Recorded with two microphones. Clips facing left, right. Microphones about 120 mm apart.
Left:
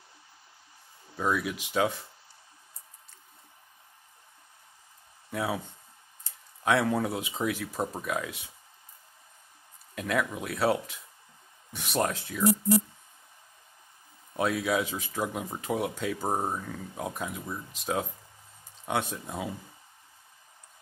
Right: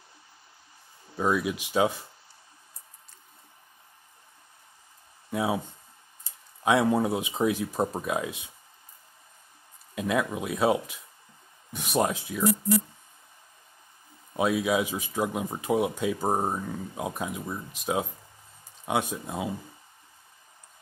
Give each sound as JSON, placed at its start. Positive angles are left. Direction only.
{"t": 1.1, "sound": "speech", "side_deg": -20}
{"t": 5.3, "sound": "speech", "side_deg": -20}
{"t": 9.9, "sound": "speech", "side_deg": -20}
{"t": 14.3, "sound": "speech", "side_deg": -15}